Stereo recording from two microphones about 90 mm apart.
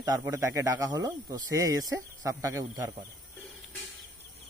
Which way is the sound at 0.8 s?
50° right (ahead or behind).